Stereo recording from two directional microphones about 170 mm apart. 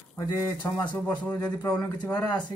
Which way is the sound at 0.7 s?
10° left (ahead or behind).